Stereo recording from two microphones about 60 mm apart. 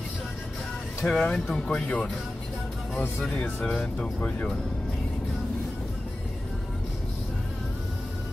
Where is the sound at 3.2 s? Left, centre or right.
Centre.